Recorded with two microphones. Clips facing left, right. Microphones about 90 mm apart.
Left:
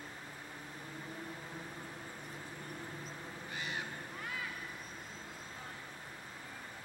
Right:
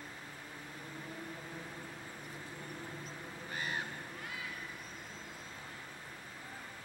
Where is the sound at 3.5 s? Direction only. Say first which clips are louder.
Right 2 dB; 40° right (ahead or behind).